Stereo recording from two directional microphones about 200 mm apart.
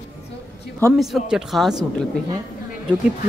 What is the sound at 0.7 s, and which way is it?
Speech, 10° left (ahead or behind).